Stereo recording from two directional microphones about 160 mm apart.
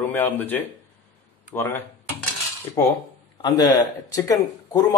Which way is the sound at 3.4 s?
20° left (ahead or behind).